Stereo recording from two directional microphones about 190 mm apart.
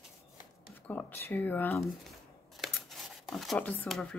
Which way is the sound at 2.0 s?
Centre (ahead or behind).